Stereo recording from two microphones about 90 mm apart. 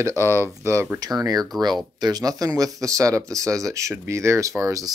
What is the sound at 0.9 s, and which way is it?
Speech, 45° right (ahead or behind).